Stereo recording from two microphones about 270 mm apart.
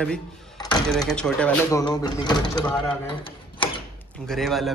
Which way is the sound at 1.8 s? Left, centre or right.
Centre.